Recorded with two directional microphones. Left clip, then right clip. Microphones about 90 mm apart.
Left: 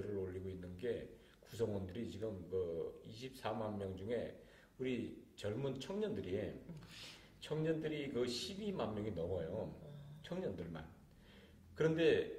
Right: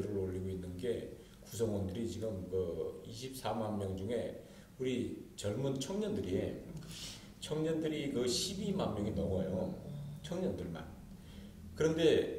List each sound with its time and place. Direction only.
0.0 s a sound: 30° right (ahead or behind)
1.5 s a man's voice: 25° right (ahead or behind)
11.8 s a man's voice: 30° right (ahead or behind)